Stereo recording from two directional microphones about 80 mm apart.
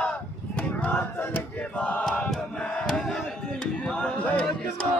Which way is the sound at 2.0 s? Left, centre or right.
Centre.